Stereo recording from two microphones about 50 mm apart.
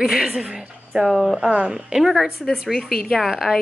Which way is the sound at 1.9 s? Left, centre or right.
Centre.